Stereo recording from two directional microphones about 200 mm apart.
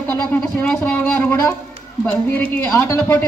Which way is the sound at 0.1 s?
10° left (ahead or behind).